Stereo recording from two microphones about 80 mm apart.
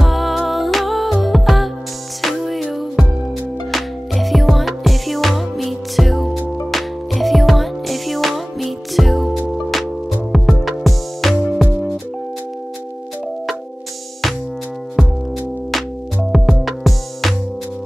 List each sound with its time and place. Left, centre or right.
0.0 s music: centre
15.0 s music: centre
16.3 s music: centre